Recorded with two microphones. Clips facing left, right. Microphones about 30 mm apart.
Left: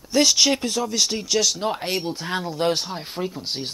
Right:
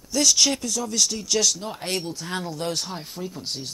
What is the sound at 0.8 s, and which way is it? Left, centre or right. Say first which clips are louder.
Speech: left 2 dB; left.